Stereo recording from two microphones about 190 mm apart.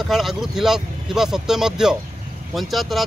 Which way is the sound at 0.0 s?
Centre (ahead or behind).